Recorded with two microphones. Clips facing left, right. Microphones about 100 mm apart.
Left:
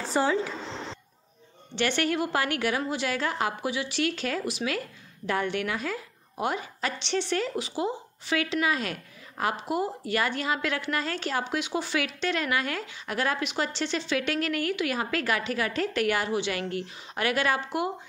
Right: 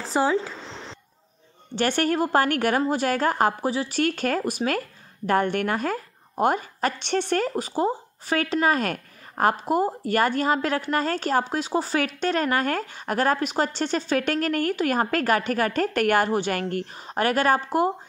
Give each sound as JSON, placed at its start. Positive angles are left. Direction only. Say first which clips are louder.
{"t": 0.1, "sound": "speech", "louder": "right 3 dB", "side_deg": -25}
{"t": 1.8, "sound": "a woman's voice", "louder": "right 4 dB", "side_deg": -45}